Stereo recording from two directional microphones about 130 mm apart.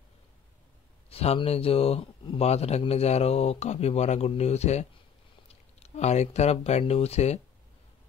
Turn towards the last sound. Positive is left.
turn(degrees=55)  # may be behind; listen again after turning